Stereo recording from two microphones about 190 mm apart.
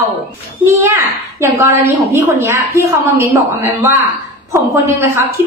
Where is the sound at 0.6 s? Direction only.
15° right (ahead or behind).